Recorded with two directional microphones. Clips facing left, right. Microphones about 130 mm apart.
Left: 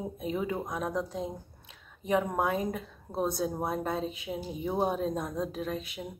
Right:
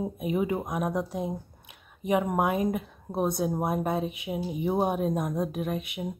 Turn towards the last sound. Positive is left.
turn(degrees=-15)  # may be behind; listen again after turning